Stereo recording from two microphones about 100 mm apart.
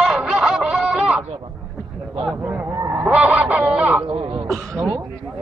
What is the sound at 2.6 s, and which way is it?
Honk, 30° right (ahead or behind).